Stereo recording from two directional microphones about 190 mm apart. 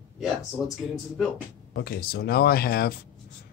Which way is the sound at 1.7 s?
55° left (ahead or behind).